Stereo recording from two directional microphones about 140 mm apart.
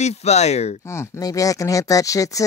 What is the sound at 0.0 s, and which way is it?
Speech, 50° left (ahead or behind).